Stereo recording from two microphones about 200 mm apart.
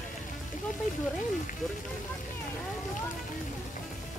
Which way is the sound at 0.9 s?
40° left (ahead or behind).